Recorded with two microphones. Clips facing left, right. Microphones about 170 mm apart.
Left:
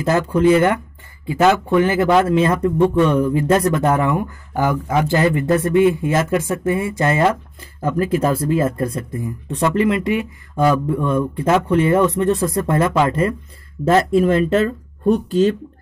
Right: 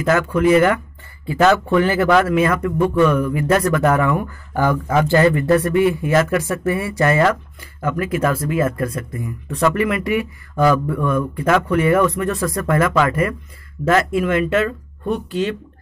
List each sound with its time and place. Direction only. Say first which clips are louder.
0.0 s speech: left 1 dB; 30° left (ahead or behind)
1.2 s speech: even; 15° left (ahead or behind)
7.8 s speech: left 2 dB; 35° left (ahead or behind)